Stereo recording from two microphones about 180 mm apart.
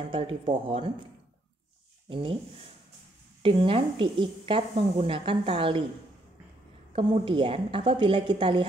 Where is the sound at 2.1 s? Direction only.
30° right (ahead or behind).